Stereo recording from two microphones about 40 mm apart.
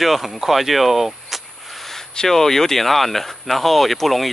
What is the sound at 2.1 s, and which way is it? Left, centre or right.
Speech, centre.